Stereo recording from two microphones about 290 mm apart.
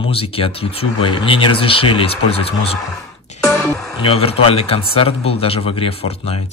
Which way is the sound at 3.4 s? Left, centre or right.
Centre.